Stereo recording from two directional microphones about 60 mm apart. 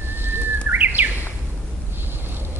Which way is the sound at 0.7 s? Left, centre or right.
Right.